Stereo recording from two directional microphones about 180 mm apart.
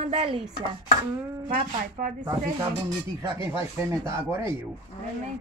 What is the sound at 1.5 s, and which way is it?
Speech, 45° right (ahead or behind).